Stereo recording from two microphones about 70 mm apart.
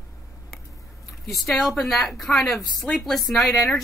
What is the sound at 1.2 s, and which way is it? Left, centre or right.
Speech, centre.